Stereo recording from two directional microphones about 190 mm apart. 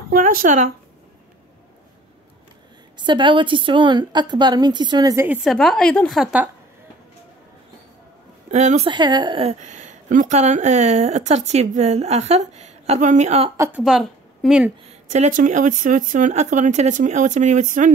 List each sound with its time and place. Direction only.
0.1 s speech: 50° right (ahead or behind)
3.0 s a woman's voice: 25° right (ahead or behind)
5.4 s a woman's voice: centre (ahead or behind)
8.5 s speech: 35° right (ahead or behind)
13.6 s a woman's voice: 10° right (ahead or behind)
14.9 s speech: 40° right (ahead or behind)